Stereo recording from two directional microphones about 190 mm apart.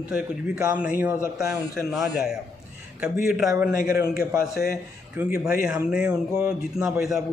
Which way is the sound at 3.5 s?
15° right (ahead or behind).